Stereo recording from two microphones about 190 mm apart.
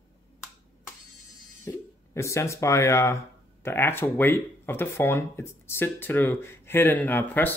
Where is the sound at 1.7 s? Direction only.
15° left (ahead or behind).